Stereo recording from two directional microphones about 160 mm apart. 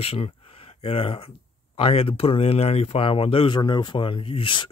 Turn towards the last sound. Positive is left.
turn(degrees=35)  # may be behind; listen again after turning